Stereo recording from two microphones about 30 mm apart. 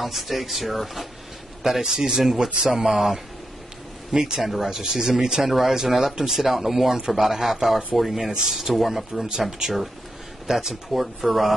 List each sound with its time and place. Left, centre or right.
0.0 s speech: centre
1.7 s a man's voice: centre
4.1 s speech: centre
4.7 s a man's voice: centre
8.3 s a man's voice: centre
8.7 s speech: centre